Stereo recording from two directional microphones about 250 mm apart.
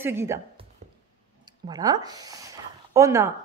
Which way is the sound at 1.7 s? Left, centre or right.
Centre.